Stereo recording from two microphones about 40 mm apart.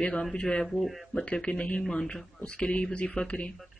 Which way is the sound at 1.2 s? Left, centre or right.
Left.